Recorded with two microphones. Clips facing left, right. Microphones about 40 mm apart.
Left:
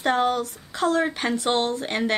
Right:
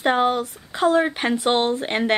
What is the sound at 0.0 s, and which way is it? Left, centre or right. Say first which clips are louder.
Speech: right 2 dB; right.